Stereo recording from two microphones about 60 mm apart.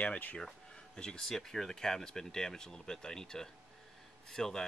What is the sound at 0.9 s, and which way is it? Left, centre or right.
Speech, centre.